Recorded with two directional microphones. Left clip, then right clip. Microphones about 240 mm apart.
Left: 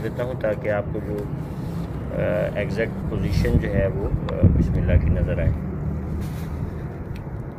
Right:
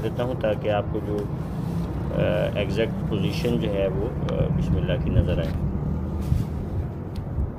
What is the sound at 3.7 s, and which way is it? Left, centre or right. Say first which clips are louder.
Cattle: even; centre.